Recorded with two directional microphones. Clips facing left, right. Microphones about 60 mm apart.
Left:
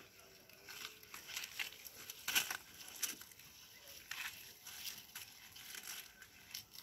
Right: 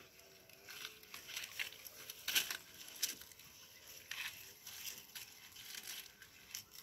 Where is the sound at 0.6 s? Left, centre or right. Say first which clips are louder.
Even; centre.